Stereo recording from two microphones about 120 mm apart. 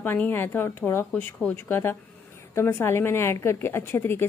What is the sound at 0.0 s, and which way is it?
A woman's voice, 15° left (ahead or behind).